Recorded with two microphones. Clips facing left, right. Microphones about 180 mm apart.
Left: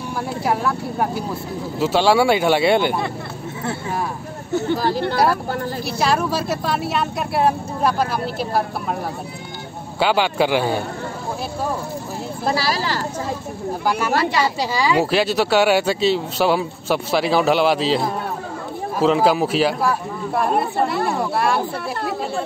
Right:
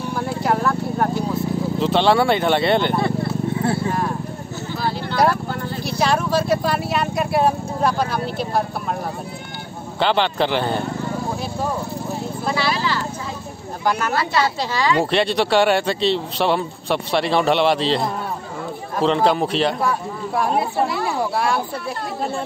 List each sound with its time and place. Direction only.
0.1 s speech: 5° left (ahead or behind)
4.7 s a sound: 40° left (ahead or behind)
5.9 s speech: 5° left (ahead or behind)
9.9 s speech: 5° left (ahead or behind)
12.4 s clip-clop: 40° left (ahead or behind)
13.8 s speech: 10° left (ahead or behind)